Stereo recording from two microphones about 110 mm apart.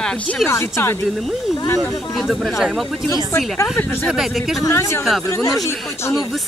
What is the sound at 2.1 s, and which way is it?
Speech, centre (ahead or behind).